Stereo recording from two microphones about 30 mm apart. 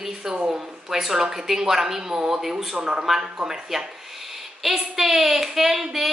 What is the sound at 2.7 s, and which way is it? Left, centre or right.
Speech, right.